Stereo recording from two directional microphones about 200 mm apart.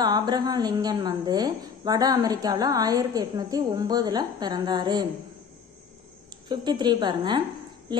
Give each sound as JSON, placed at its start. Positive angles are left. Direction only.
{"t": 0.0, "sound": "a woman's voice", "side_deg": -20}
{"t": 6.5, "sound": "a woman's voice", "side_deg": -20}